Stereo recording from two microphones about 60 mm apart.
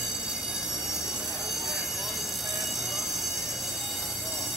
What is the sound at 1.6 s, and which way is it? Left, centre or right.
Train, centre.